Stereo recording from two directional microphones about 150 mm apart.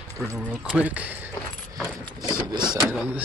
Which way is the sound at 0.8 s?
10° right (ahead or behind).